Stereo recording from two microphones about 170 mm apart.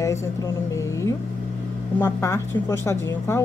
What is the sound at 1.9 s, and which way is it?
A woman's voice, 15° left (ahead or behind).